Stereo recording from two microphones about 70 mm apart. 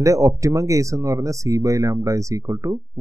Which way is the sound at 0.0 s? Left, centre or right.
Right.